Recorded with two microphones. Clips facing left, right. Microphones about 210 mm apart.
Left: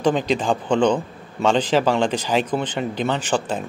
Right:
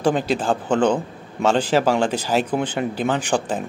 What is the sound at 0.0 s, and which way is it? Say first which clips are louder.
A man's voice: even; 10° right (ahead or behind).